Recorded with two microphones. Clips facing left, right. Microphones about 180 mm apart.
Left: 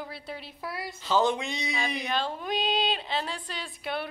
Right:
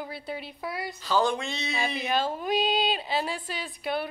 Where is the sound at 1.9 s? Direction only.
5° right (ahead or behind).